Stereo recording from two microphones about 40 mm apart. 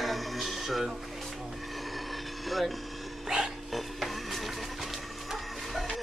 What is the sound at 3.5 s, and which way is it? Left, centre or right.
Music, centre.